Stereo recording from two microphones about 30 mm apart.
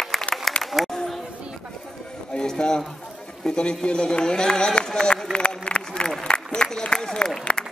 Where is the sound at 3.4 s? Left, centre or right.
Left.